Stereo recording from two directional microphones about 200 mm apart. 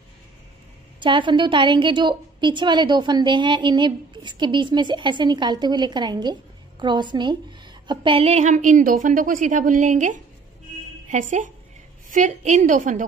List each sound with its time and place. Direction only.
0.9 s a woman's voice: 25° right (ahead or behind); by 13.0 s 40° right (ahead or behind)